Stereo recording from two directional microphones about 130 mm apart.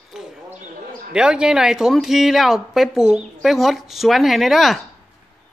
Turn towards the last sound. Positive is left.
turn(degrees=0)  # may be behind; listen again after turning